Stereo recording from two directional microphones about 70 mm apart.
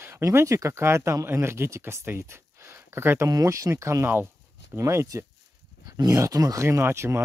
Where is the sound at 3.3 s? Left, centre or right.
Right.